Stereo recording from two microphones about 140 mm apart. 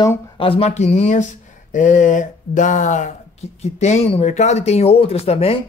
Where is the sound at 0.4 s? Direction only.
45° left (ahead or behind).